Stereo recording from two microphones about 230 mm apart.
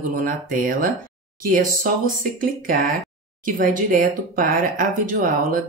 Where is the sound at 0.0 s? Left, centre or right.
Right.